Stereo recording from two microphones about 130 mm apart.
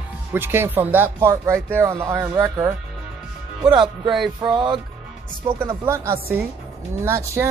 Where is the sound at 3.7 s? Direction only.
40° right (ahead or behind).